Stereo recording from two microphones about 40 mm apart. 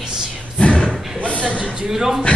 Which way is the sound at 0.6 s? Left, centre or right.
Left.